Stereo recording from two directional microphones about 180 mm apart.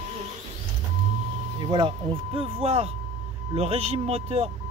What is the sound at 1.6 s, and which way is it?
Speech, 25° right (ahead or behind).